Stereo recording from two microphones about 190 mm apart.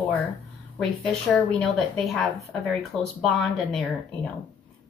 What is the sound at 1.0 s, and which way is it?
A woman's voice, 5° left (ahead or behind).